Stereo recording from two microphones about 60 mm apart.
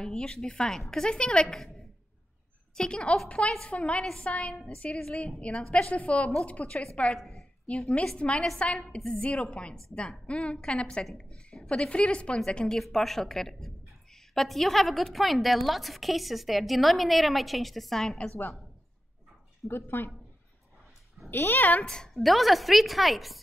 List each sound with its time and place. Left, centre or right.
0.0 s a woman's voice: centre
2.7 s a woman's voice: centre
4.9 s a woman's voice: centre
7.2 s a sound: centre
7.9 s a woman's voice: centre
8.8 s a woman's voice: centre
19.7 s speech: left
21.3 s speech: left
21.8 s a woman's voice: centre